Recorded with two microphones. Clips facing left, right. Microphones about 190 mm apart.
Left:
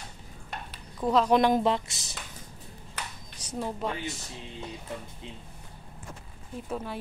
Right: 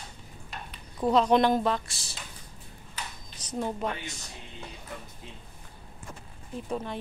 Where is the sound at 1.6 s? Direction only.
20° left (ahead or behind).